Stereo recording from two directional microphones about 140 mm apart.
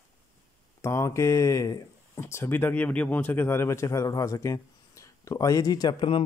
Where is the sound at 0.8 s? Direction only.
20° left (ahead or behind).